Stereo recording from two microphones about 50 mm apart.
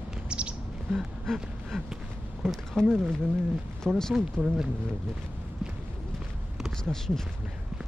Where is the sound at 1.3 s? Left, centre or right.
Centre.